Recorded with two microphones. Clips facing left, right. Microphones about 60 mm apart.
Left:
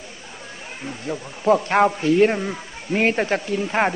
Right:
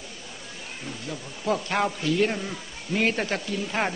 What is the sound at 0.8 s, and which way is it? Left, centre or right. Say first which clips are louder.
Speech: left 7 dB; left.